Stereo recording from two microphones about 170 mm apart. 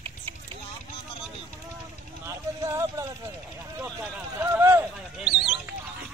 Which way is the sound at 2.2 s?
15° right (ahead or behind).